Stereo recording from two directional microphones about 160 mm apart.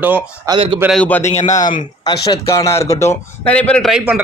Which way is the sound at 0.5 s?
30° right (ahead or behind).